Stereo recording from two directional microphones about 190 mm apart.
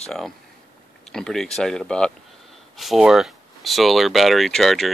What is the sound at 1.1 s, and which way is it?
Speech, centre (ahead or behind).